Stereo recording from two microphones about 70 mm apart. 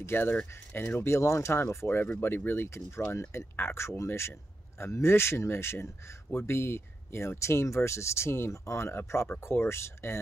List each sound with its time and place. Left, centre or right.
0.0 s a man's voice: left